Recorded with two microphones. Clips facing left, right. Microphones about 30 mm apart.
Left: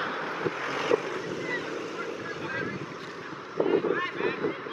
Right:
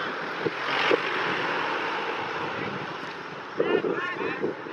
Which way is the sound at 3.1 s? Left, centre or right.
Right.